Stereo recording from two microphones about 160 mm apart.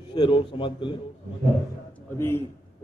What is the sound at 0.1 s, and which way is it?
Speech, 30° left (ahead or behind).